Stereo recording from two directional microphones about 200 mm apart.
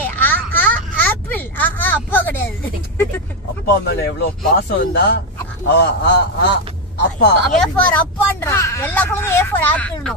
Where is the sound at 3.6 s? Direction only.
55° left (ahead or behind).